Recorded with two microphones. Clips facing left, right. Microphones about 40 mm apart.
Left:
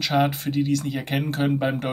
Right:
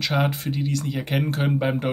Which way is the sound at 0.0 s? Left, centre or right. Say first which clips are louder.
Left 2 dB; centre.